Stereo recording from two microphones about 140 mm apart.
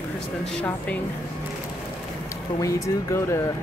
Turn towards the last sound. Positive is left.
turn(degrees=20)  # may be behind; listen again after turning